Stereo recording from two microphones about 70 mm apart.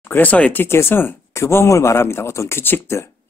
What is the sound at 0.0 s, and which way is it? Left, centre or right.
Speech, left.